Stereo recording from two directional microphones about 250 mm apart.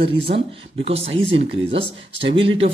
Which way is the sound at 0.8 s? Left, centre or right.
Right.